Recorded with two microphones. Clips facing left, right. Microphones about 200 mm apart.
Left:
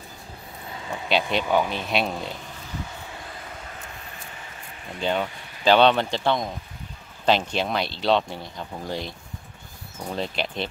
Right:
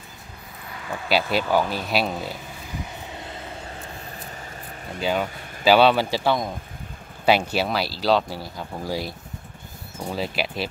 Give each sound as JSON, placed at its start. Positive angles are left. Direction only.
{"t": 0.7, "sound": "a sound", "side_deg": 25}
{"t": 1.5, "sound": "speech", "side_deg": -5}
{"t": 5.0, "sound": "speech", "side_deg": -5}
{"t": 10.1, "sound": "speech", "side_deg": -5}